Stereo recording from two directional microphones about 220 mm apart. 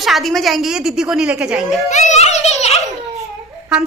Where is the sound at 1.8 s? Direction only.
30° left (ahead or behind).